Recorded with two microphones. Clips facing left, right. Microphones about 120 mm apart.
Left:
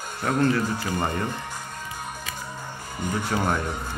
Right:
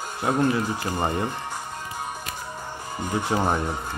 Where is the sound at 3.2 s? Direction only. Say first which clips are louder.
Right 2 dB; 20° right (ahead or behind).